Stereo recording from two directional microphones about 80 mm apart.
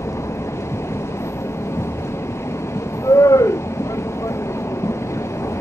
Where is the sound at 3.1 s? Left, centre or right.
Left.